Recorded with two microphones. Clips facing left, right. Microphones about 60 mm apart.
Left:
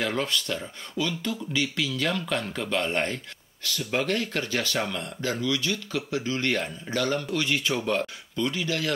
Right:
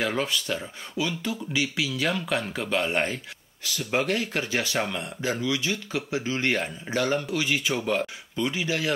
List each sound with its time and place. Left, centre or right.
0.0 s speech: centre
8.4 s speech: centre